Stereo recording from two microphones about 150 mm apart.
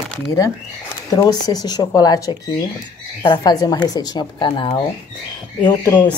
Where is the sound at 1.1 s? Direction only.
25° left (ahead or behind).